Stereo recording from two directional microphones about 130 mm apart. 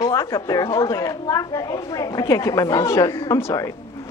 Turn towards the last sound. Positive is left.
turn(degrees=25)  # may be behind; listen again after turning